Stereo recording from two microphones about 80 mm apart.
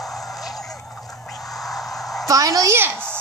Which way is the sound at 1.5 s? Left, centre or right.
Centre.